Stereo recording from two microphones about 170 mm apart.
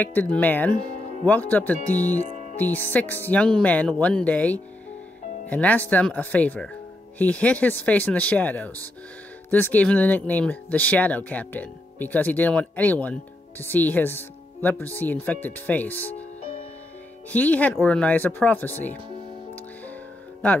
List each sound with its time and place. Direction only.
0.0 s speech: 10° left (ahead or behind)
16.2 s music: 40° left (ahead or behind)
17.3 s speech: 10° left (ahead or behind)
19.5 s music: 10° left (ahead or behind)